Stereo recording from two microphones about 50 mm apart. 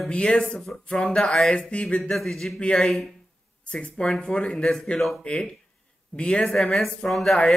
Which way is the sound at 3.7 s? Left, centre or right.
Centre.